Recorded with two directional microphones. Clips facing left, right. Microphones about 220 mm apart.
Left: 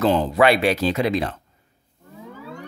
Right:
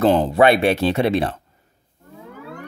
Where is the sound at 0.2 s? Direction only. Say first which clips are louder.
Right 2 dB; 25° right (ahead or behind).